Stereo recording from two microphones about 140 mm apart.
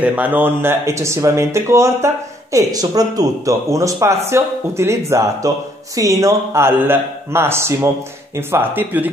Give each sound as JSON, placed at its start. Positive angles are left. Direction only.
{"t": 0.0, "sound": "speech", "side_deg": -10}